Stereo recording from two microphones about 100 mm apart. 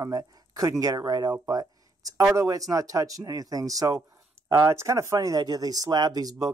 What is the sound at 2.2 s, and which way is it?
Speech, 30° right (ahead or behind).